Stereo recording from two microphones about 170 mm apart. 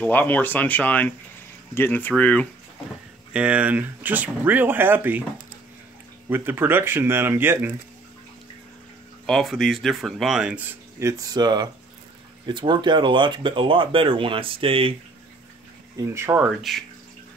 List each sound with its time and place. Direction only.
0.0 s speech: 10° left (ahead or behind)
3.3 s speech: 5° right (ahead or behind)
6.2 s speech: 10° right (ahead or behind)
9.2 s speech: centre (ahead or behind); by 15.0 s 35° right (ahead or behind)
16.2 s speech: 10° right (ahead or behind)